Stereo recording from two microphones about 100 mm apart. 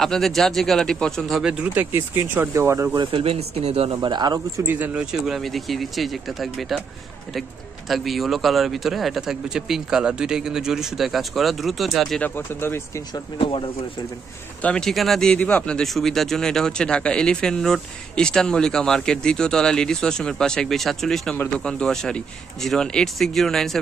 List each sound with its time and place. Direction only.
0.0 s a man's voice: centre (ahead or behind)
1.7 s speech: 20° right (ahead or behind)
3.1 s speech: 70° right (ahead or behind); by 3.9 s 85° right
4.0 s speech: 45° right (ahead or behind)
4.6 s speech: 20° right (ahead or behind)
5.2 s a man's voice: centre (ahead or behind)
7.9 s a man's voice: centre (ahead or behind)
12.2 s speech: 20° left (ahead or behind)
13.4 s speech: 65° left (ahead or behind)
14.6 s a man's voice: 10° left (ahead or behind)